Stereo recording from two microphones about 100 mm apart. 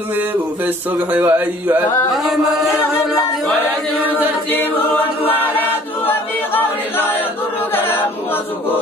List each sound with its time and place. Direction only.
1.1 s speech: 20° right (ahead or behind)
2.2 s chant: centre (ahead or behind)
4.5 s choir: 20° left (ahead or behind)
5.3 s a capella: 20° left (ahead or behind)